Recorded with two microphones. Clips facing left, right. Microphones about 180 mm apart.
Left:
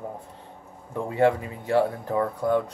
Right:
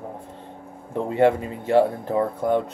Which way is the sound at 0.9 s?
25° right (ahead or behind).